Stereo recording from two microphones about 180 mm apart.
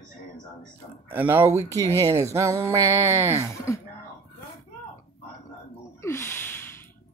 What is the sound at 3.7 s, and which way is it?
Speech, 15° left (ahead or behind).